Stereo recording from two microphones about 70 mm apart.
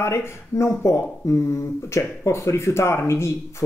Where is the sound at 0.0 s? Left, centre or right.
Left.